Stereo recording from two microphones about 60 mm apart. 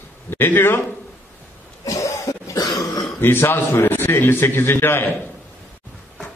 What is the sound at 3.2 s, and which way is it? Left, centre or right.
A man's voice, left.